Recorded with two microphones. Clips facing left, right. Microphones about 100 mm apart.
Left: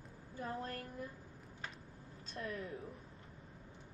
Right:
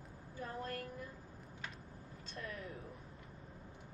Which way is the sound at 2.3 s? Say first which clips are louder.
Left 3 dB; 35° left (ahead or behind).